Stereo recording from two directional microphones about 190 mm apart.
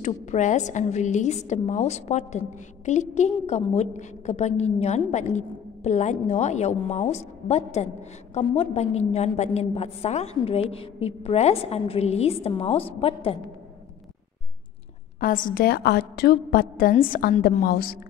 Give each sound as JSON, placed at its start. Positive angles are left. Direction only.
{"t": 0.0, "sound": "a woman's voice", "side_deg": 40}
{"t": 15.1, "sound": "a woman's voice", "side_deg": 45}